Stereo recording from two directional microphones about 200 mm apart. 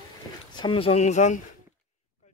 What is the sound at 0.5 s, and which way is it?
Speech, 25° left (ahead or behind).